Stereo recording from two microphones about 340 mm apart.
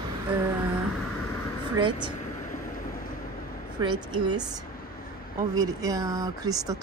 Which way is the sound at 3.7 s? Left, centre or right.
Centre.